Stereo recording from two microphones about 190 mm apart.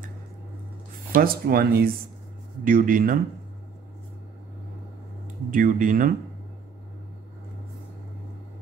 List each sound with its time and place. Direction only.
1.1 s speech: 50° right (ahead or behind)
5.5 s speech: 45° right (ahead or behind)